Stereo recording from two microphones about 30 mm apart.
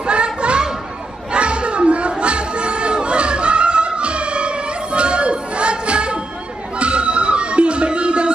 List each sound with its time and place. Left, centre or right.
0.0 s children playing: right
1.3 s music: right